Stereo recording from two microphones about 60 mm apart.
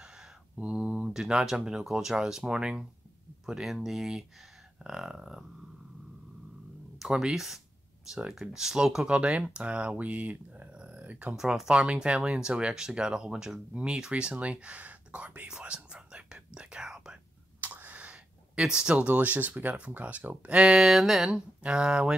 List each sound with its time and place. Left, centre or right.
0.6 s speech: centre
7.0 s speech: centre; by 11.3 s right
11.3 s speech: centre
15.6 s whispering: centre
17.6 s a sound: right
18.6 s speech: centre
19.0 s speech: right
20.8 s speech: centre
21.3 s speech: centre